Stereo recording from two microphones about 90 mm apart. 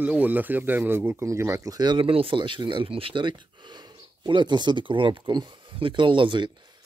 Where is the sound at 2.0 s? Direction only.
90° right; by 6.8 s 55° right (ahead or behind).